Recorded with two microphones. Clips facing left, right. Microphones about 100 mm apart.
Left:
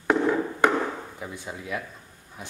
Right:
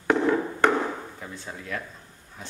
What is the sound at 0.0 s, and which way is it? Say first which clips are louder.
Chop: even; 5° left (ahead or behind).